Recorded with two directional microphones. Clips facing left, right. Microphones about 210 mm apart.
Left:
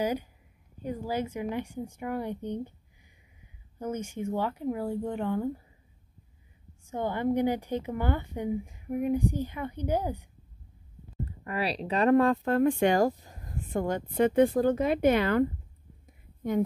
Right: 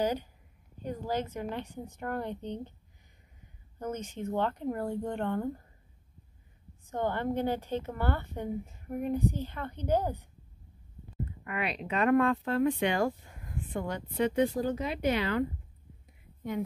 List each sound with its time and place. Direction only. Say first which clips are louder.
0.0 s a woman's voice: left 1 dB; 10° left (ahead or behind)
3.8 s a woman's voice: left 3 dB; 10° left (ahead or behind)
6.9 s a woman's voice: left 3 dB; 10° left (ahead or behind)
11.4 s speech: left 4 dB; 35° left (ahead or behind); by 15.4 s 50° left (ahead or behind)